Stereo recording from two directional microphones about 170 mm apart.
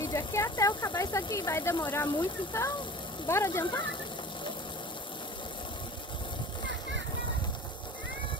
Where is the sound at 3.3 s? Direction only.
15° left (ahead or behind).